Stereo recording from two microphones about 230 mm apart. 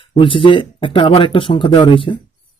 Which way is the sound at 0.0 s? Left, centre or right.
Left.